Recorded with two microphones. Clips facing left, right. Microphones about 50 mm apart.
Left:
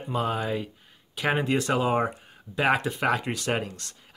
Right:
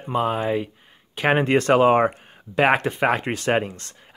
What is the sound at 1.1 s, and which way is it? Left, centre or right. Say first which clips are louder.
Speech: right 6 dB; right.